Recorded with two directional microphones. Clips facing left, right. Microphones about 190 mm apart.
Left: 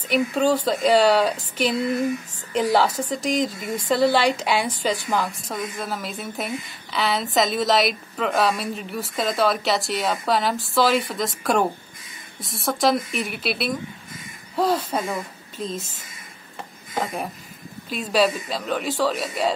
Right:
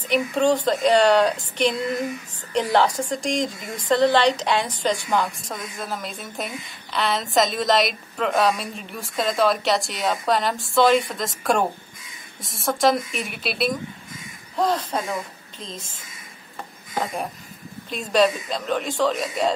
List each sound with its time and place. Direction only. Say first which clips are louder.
0.1 s a woman's voice: even; 5° left (ahead or behind)
17.0 s a woman's voice: even; centre (ahead or behind)